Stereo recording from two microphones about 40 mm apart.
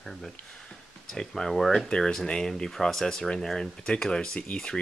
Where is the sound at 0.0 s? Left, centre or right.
Centre.